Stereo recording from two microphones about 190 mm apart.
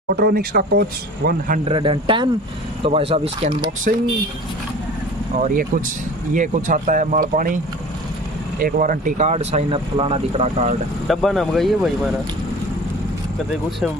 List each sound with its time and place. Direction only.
0.1 s speech: 55° right (ahead or behind)
1.6 s speech: 25° right (ahead or behind)
5.4 s speech: 45° right (ahead or behind)
8.5 s speech: 50° right (ahead or behind)
11.1 s speech: centre (ahead or behind)